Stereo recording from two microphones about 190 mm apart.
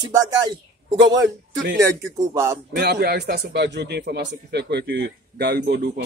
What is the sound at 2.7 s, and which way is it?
Speech, 55° right (ahead or behind).